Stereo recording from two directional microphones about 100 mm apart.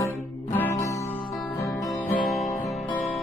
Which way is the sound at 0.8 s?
30° left (ahead or behind).